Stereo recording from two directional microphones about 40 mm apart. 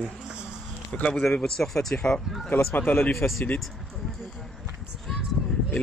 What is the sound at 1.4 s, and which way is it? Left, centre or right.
Speech, centre.